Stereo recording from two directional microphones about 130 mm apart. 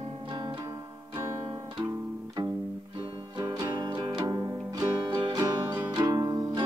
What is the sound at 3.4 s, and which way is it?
Music, 30° right (ahead or behind).